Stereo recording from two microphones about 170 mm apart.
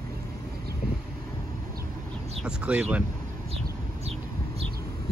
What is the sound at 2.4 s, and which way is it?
Speech, 5° right (ahead or behind).